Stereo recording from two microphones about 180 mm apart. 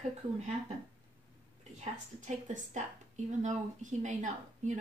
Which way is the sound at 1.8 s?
40° right (ahead or behind).